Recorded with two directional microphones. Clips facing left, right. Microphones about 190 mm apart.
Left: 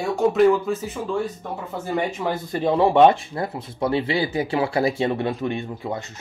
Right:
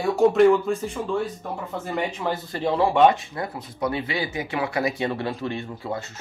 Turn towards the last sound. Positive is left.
turn(degrees=20)  # may be behind; listen again after turning